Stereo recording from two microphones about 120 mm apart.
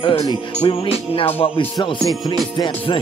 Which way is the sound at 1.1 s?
50° left (ahead or behind).